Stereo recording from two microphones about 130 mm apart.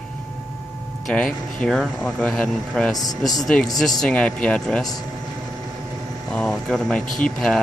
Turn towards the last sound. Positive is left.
turn(degrees=5)  # may be behind; listen again after turning